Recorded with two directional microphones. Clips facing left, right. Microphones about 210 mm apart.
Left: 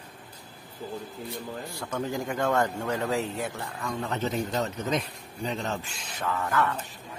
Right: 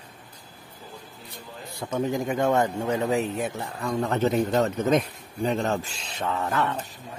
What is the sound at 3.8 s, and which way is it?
A man's voice, 45° right (ahead or behind).